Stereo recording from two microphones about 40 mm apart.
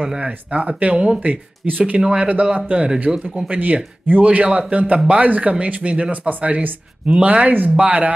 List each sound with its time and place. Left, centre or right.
0.2 s speech: right
0.9 s speech: right
1.2 s speech: right
2.0 s speech: right
3.1 s speech: right
3.4 s speech: right